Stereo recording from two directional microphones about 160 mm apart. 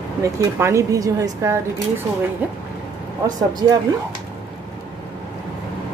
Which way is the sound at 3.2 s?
25° right (ahead or behind).